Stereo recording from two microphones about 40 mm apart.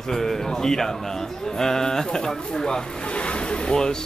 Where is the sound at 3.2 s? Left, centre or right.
Left.